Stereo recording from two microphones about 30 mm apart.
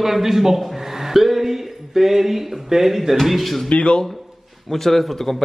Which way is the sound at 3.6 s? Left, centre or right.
Left.